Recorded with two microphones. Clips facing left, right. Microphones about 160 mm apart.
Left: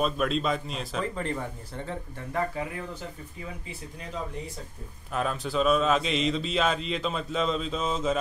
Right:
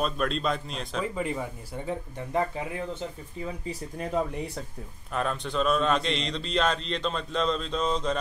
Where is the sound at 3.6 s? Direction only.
50° right (ahead or behind).